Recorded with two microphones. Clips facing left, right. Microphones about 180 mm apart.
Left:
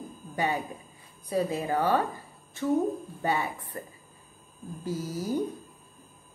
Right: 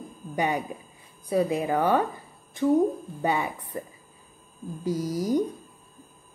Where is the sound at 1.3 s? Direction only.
15° right (ahead or behind).